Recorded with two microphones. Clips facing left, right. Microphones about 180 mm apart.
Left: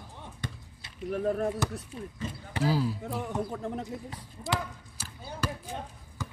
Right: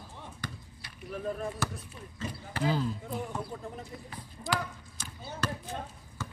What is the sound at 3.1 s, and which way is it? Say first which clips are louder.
Speech: left 3 dB; 75° left (ahead or behind).